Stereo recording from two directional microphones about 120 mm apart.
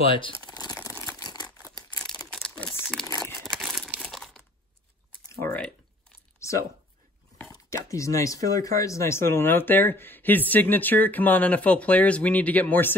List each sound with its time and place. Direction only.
0.0 s speech: 45° left (ahead or behind)
0.4 s crumpling: 30° left (ahead or behind)
0.8 s a sound: 25° left (ahead or behind)
1.2 s crumpling: 35° left (ahead or behind)
3.3 s crumpling: centre (ahead or behind)
5.4 s typing: 10° left (ahead or behind)
6.4 s a sound: 25° left (ahead or behind)
7.7 s speech: 25° left (ahead or behind)